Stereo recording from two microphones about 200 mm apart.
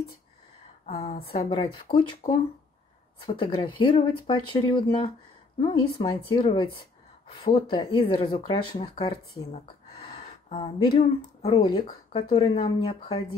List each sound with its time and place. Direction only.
0.8 s speech: 30° left (ahead or behind)
9.5 s a sound: 30° left (ahead or behind)
11.4 s speech: 25° left (ahead or behind)